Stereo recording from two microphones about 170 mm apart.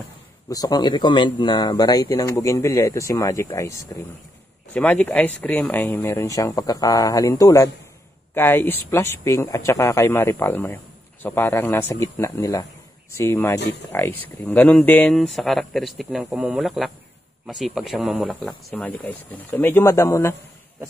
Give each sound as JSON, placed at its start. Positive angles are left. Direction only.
{"t": 0.5, "sound": "speech", "side_deg": 25}